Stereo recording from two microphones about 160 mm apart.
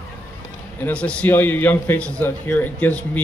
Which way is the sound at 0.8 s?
5° left (ahead or behind).